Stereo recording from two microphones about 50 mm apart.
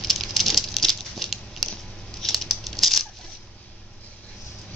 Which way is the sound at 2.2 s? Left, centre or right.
Centre.